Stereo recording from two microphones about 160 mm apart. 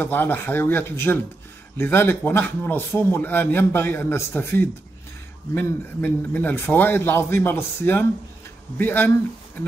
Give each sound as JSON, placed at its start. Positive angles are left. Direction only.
{"t": 0.0, "sound": "speech", "side_deg": 15}